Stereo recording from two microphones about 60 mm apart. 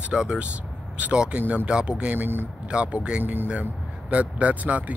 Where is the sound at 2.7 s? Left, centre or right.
Centre.